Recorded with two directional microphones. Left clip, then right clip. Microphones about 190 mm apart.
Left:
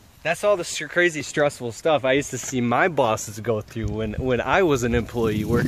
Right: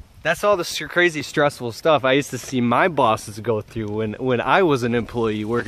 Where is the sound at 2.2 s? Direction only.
10° right (ahead or behind).